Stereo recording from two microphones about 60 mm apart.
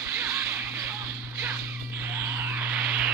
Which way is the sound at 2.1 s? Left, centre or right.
Right.